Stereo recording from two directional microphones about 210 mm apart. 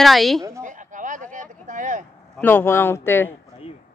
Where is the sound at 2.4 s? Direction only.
10° left (ahead or behind).